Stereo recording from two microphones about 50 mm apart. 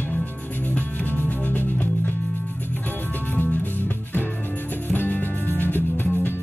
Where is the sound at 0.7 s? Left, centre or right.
Left.